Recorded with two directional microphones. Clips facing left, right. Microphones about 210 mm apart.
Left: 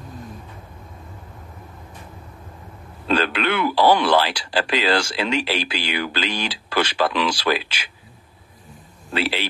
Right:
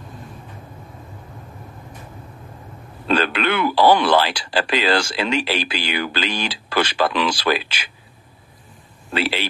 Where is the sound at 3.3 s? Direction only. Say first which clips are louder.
Right 1 dB; 55° right (ahead or behind).